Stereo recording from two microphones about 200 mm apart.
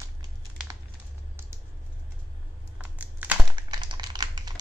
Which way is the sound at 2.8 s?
10° right (ahead or behind).